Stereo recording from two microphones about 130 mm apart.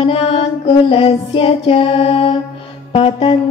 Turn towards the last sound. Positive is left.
turn(degrees=45)  # may be behind; listen again after turning